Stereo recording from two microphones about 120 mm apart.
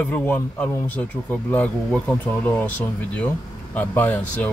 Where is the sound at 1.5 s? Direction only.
15° left (ahead or behind).